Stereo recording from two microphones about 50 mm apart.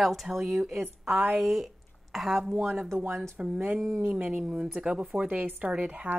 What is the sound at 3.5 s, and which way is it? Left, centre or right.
Speech, right.